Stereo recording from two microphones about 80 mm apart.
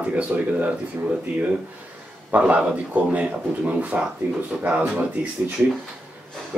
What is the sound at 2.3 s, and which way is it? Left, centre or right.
Speech, centre.